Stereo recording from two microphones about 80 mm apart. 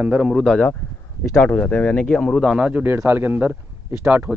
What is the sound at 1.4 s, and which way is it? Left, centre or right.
Speech, centre.